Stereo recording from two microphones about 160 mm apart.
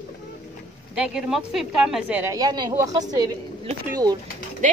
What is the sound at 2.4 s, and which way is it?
Speech, 25° right (ahead or behind).